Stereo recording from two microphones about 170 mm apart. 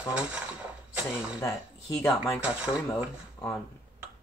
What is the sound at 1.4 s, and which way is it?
Speech, 20° left (ahead or behind).